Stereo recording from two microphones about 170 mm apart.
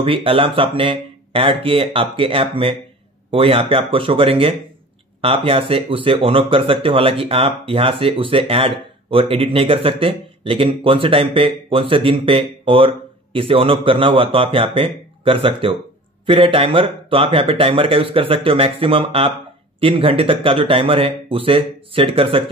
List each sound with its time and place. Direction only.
0.0 s speech: 30° right (ahead or behind)